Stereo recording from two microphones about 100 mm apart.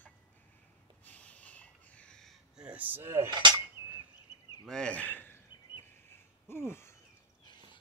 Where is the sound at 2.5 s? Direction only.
15° right (ahead or behind).